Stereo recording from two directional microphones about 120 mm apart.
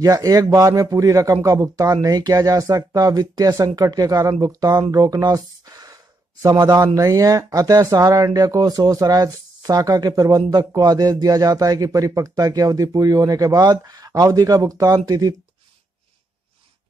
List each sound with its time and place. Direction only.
0.0 s a man's voice: 30° right (ahead or behind)